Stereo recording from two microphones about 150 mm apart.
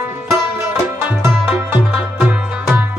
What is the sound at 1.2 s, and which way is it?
Music, 10° right (ahead or behind).